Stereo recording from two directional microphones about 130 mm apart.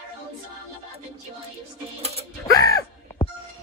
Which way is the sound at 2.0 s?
50° right (ahead or behind).